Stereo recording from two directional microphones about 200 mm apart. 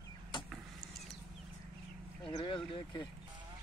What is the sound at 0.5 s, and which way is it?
Vehicle, 5° right (ahead or behind).